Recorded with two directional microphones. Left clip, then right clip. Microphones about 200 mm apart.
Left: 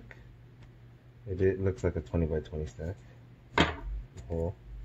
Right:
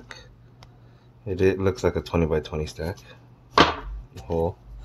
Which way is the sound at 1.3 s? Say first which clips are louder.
Right 7 dB; 25° right (ahead or behind).